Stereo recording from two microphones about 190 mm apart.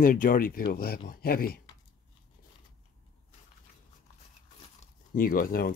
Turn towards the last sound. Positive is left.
turn(degrees=50)  # may be behind; listen again after turning